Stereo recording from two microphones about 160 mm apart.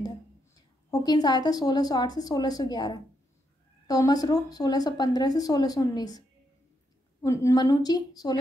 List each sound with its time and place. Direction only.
0.6 s speech: 25° left (ahead or behind)